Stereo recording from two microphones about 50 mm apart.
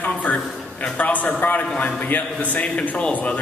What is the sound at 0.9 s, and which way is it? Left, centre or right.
A man's voice, left.